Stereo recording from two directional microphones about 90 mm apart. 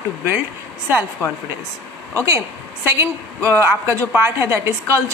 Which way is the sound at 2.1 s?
35° right (ahead or behind).